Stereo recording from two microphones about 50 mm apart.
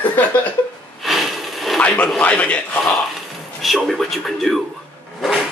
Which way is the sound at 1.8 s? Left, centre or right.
Left.